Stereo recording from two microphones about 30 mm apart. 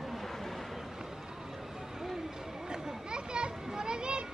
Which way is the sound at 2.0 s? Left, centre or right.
Centre.